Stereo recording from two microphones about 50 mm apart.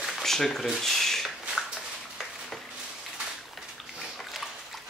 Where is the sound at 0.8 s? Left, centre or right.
Centre.